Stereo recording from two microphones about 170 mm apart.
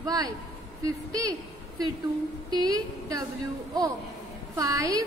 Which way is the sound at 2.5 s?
20° right (ahead or behind).